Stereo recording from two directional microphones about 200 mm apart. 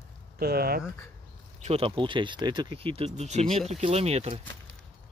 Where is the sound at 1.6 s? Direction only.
30° right (ahead or behind).